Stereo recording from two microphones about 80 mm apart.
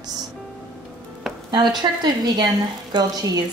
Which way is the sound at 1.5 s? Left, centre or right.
Right.